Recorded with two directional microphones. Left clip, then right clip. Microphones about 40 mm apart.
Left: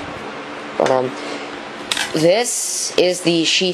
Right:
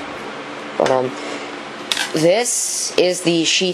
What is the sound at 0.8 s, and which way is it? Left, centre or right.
Speech, centre.